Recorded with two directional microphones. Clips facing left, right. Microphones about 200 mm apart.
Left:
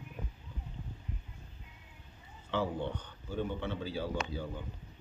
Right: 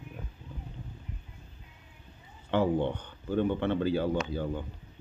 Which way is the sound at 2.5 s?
55° right (ahead or behind).